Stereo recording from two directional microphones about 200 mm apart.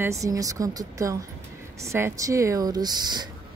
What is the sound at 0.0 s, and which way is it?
A woman's voice, 15° right (ahead or behind).